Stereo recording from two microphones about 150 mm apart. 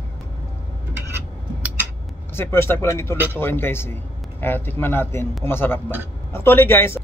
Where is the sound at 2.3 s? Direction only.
15° left (ahead or behind).